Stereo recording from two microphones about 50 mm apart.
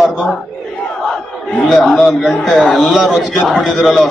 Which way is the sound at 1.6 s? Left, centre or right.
Centre.